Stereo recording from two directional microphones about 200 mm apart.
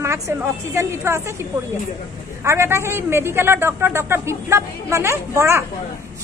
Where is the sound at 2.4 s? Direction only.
15° right (ahead or behind).